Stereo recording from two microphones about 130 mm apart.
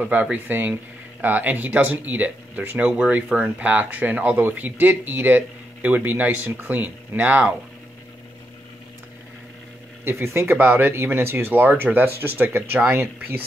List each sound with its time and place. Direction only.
0.0 s speech: 10° right (ahead or behind)
10.0 s speech: 20° right (ahead or behind)